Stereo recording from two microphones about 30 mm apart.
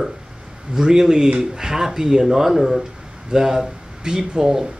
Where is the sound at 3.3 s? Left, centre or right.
Centre.